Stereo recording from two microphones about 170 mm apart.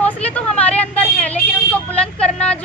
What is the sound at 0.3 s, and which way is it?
Vehicle, 10° left (ahead or behind).